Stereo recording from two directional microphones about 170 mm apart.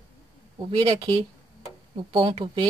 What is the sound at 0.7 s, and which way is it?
Speech, 30° right (ahead or behind).